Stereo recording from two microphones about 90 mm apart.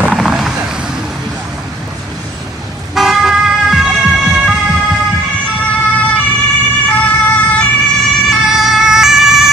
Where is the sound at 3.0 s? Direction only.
5° right (ahead or behind).